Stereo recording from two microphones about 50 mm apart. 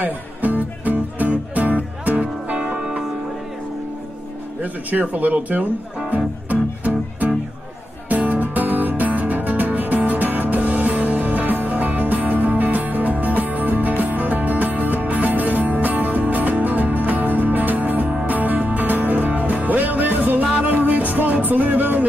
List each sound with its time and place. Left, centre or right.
0.0 s music: right
2.6 s music: centre
5.1 s speech: right
6.0 s music: right